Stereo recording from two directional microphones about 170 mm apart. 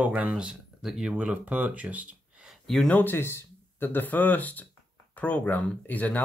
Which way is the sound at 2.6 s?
5° left (ahead or behind).